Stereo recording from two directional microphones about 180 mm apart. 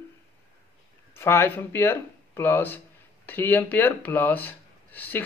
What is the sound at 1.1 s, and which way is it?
Speech, 15° left (ahead or behind).